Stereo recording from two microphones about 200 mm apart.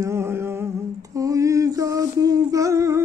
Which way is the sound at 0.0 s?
10° right (ahead or behind).